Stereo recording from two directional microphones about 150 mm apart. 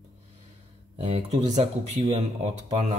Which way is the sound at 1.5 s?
50° right (ahead or behind).